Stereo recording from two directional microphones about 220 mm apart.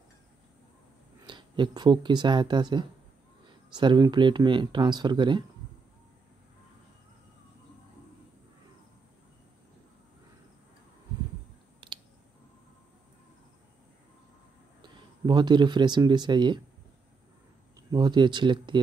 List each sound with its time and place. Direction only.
1.2 s speech: 20° right (ahead or behind)
11.8 s clicking: 20° right (ahead or behind)
14.8 s speech: 20° right (ahead or behind)
17.9 s speech: 20° right (ahead or behind)